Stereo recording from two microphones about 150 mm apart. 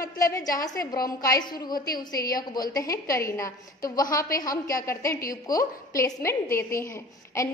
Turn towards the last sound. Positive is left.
turn(degrees=20)  # may be behind; listen again after turning